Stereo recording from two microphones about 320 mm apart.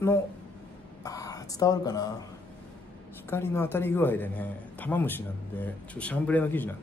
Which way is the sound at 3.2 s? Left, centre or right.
Centre.